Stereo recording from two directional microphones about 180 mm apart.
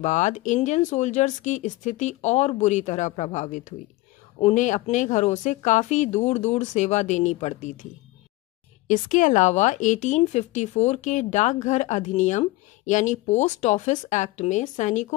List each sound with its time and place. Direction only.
0.0 s a woman's voice: 40° left (ahead or behind)